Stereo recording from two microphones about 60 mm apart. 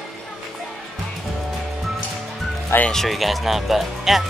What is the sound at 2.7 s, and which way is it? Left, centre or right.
Speech, left.